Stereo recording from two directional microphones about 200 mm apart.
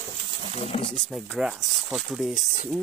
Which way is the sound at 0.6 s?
30° left (ahead or behind).